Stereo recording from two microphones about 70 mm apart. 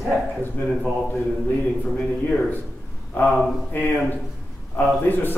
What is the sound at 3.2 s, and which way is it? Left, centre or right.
Speech, centre.